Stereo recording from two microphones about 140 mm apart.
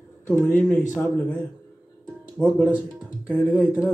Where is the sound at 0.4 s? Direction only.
10° left (ahead or behind).